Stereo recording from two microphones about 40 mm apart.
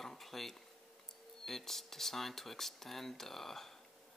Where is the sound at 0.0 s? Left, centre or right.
Centre.